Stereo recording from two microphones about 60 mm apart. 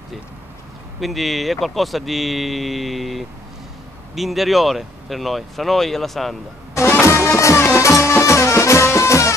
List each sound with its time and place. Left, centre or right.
1.0 s speech: centre
6.7 s music: left